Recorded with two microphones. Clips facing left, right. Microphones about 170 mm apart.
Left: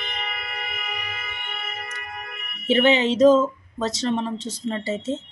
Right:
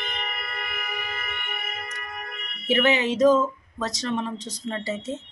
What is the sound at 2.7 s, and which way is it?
Speech, 25° left (ahead or behind).